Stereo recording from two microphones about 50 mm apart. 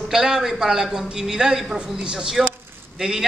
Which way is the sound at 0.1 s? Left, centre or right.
Centre.